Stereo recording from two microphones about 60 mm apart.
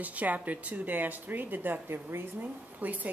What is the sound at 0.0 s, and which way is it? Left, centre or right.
Speech, right.